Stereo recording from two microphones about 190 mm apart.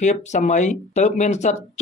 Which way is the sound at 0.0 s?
40° left (ahead or behind).